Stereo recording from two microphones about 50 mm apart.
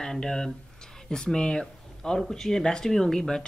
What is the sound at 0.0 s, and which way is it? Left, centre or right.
Speech, centre.